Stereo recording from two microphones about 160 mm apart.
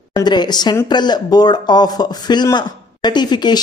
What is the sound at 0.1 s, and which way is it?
Speech, 25° left (ahead or behind).